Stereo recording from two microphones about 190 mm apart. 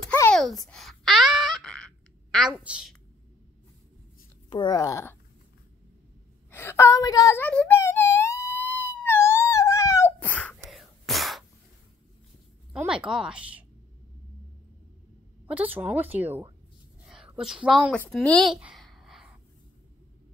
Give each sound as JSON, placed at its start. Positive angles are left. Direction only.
{"t": 0.0, "sound": "a sound", "side_deg": 10}
{"t": 2.3, "sound": "a woman's voice", "side_deg": 0}
{"t": 4.5, "sound": "speech", "side_deg": 25}
{"t": 6.5, "sound": "wail", "side_deg": 15}
{"t": 12.7, "sound": "a woman's voice", "side_deg": -5}
{"t": 15.4, "sound": "speech", "side_deg": -10}
{"t": 17.1, "sound": "a sound", "side_deg": -5}
{"t": 17.9, "sound": "a woman's voice", "side_deg": 5}